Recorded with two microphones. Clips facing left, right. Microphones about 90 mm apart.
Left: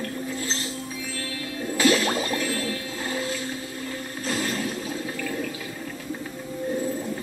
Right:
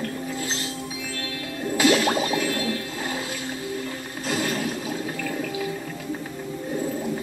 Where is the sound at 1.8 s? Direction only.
15° right (ahead or behind).